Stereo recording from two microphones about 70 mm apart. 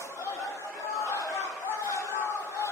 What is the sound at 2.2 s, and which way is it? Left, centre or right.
Crowd, left.